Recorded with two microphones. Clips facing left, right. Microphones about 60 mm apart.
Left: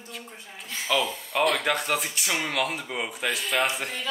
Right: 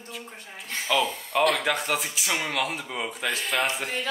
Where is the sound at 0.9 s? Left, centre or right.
Centre.